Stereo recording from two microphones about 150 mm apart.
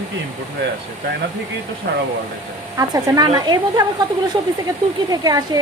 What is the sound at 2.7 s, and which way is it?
Speech, 25° right (ahead or behind).